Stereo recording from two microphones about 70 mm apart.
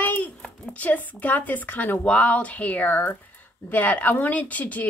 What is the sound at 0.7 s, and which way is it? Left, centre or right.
A woman's voice, left.